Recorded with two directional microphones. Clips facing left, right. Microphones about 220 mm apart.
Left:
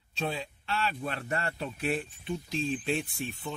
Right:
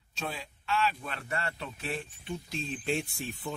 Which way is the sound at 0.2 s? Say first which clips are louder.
Left 5 dB; 35° left (ahead or behind).